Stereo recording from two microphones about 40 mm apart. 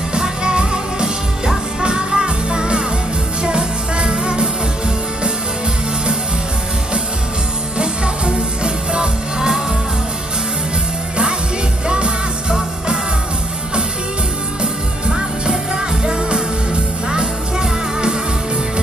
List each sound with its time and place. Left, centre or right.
0.2 s music: centre
7.7 s music: right
11.9 s music: right
14.6 s music: right